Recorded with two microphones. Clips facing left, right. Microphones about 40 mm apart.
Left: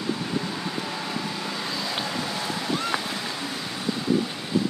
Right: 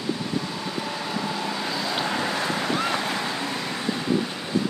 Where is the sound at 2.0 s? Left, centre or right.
Right.